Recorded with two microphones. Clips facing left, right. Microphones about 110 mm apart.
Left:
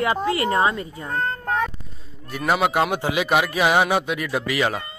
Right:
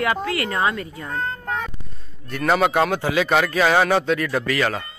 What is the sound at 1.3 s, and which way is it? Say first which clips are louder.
Child singing: left 4 dB; 45° left (ahead or behind).